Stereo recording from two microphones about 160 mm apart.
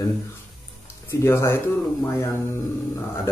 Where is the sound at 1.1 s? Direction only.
15° left (ahead or behind).